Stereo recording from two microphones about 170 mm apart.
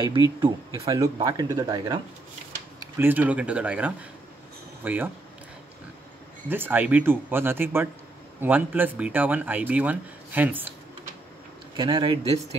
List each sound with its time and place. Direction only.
0.7 s speech: 20° right (ahead or behind)
6.5 s speech: 10° right (ahead or behind)
11.7 s speech: 25° right (ahead or behind)